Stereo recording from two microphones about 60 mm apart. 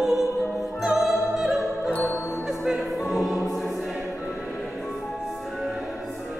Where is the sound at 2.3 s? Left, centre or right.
Centre.